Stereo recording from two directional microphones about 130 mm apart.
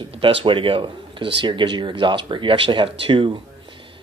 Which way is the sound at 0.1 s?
45° right (ahead or behind).